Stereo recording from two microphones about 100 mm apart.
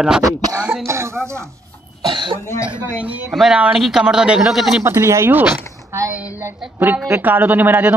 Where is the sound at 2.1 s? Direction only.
55° right (ahead or behind).